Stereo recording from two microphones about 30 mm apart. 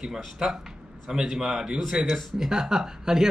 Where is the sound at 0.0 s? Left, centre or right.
Centre.